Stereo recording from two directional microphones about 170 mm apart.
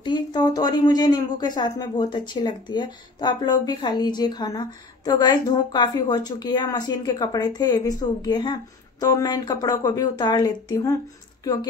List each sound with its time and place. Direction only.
0.0 s speech: 25° left (ahead or behind)